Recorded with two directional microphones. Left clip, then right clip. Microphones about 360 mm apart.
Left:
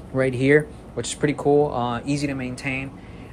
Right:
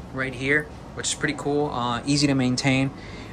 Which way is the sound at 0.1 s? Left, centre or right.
Centre.